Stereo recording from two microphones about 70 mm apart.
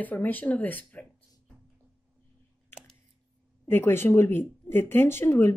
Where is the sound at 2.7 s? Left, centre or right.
Left.